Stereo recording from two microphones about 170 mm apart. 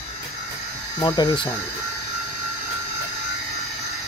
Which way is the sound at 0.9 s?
20° left (ahead or behind).